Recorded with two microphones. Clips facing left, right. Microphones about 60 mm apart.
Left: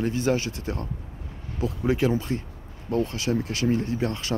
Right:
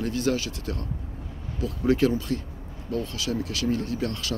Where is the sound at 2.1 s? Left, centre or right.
Left.